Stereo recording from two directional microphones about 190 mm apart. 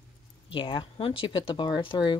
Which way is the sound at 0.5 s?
25° left (ahead or behind).